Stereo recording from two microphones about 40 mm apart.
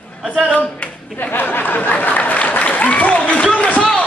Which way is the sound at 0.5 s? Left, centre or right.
Left.